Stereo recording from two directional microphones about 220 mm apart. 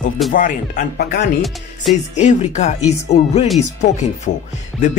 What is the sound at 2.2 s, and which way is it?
Speech, 30° left (ahead or behind).